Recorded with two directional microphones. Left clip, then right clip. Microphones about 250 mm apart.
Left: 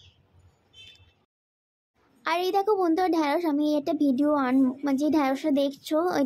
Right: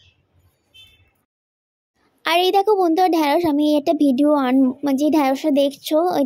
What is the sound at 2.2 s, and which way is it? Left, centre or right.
A woman's voice, right.